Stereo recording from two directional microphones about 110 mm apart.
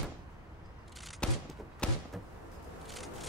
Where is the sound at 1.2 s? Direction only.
10° left (ahead or behind).